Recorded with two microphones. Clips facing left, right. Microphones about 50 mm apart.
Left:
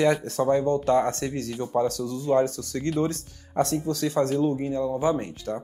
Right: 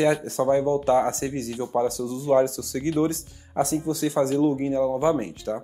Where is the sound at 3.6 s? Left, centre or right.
Centre.